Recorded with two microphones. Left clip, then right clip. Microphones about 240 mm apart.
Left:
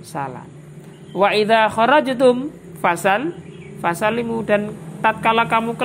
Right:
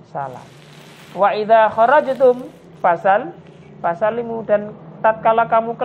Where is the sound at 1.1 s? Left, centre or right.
Left.